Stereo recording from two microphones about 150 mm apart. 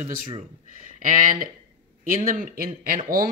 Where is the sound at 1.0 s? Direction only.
65° right (ahead or behind).